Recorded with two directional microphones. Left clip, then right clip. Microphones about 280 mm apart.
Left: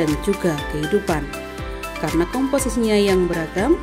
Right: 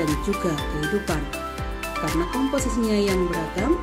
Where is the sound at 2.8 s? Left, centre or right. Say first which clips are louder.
Left 6 dB; left.